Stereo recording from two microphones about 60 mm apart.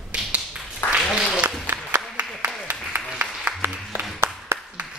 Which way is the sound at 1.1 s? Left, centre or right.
Centre.